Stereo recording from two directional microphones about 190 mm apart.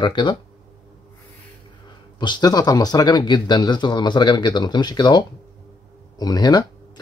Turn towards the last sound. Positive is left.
turn(degrees=20)  # may be behind; listen again after turning